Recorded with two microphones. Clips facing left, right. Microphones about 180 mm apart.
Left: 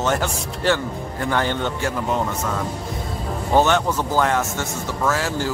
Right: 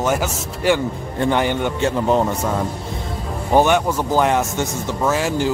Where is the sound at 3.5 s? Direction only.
15° right (ahead or behind).